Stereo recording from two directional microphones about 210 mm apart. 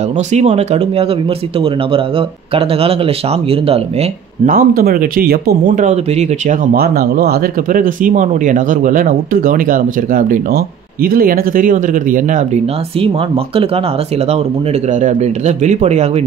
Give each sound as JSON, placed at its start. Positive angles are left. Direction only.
{"t": 0.3, "sound": "speech", "side_deg": -30}
{"t": 4.5, "sound": "speech", "side_deg": -45}
{"t": 15.0, "sound": "speech", "side_deg": -35}